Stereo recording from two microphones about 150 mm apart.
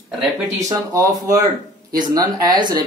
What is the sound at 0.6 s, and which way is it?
Speech, 20° right (ahead or behind).